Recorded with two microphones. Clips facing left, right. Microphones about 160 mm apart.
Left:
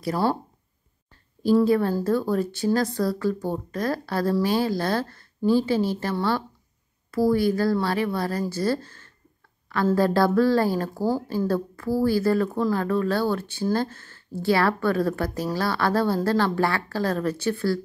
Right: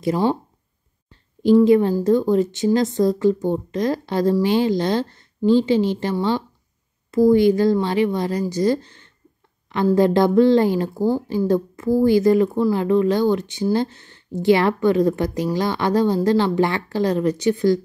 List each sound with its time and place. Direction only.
0.0 s speech: 15° right (ahead or behind)
1.4 s a woman's voice: 20° right (ahead or behind)